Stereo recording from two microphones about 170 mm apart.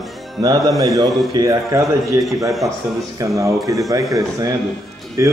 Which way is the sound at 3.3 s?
20° right (ahead or behind).